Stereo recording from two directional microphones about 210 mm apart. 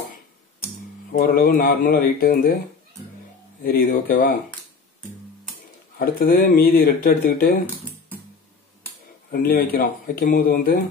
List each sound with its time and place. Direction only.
1.1 s speech: 45° left (ahead or behind)
3.6 s speech: 45° left (ahead or behind)
5.9 s speech: 45° left (ahead or behind)
9.3 s speech: 45° left (ahead or behind)